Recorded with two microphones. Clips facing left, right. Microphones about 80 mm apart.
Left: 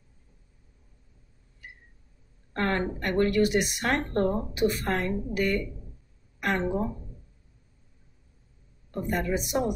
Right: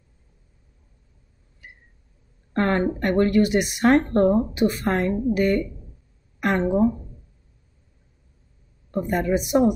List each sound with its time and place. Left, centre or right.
2.5 s speech: right
9.1 s speech: right